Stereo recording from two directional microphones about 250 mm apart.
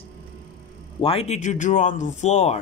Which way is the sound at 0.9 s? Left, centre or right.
Left.